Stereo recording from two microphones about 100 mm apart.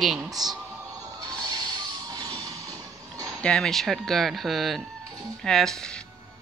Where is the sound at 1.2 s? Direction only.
40° right (ahead or behind).